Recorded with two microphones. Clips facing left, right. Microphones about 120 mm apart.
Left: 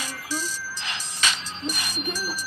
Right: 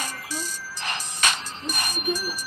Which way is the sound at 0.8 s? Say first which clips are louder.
Right 3 dB; 50° right (ahead or behind).